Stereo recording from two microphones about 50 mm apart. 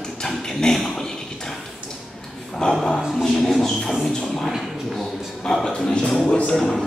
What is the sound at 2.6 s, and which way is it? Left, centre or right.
Speech, centre.